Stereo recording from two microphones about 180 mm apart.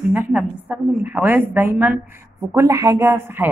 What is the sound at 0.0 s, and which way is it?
A woman's voice, 5° right (ahead or behind).